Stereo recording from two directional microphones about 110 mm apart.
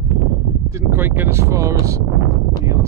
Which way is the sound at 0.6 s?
25° right (ahead or behind).